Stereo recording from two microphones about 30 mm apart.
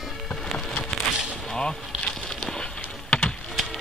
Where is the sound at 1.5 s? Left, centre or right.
Left.